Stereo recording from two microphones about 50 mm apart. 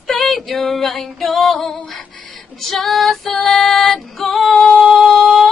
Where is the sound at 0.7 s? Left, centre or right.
Centre.